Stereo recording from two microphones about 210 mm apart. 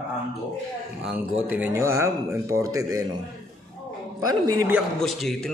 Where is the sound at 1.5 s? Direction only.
10° right (ahead or behind).